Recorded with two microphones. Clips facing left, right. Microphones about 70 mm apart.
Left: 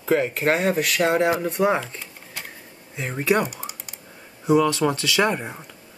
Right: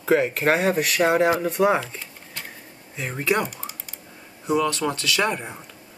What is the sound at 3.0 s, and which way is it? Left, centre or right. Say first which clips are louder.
Speech: left 2 dB; centre.